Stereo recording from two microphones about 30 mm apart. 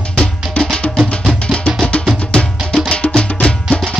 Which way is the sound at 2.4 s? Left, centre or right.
Centre.